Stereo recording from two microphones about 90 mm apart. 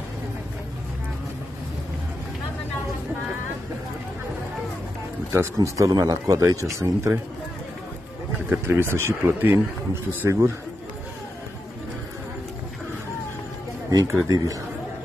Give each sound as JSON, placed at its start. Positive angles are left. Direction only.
{"t": 5.3, "sound": "speech", "side_deg": -35}
{"t": 8.5, "sound": "speech", "side_deg": -25}
{"t": 13.8, "sound": "speech", "side_deg": -35}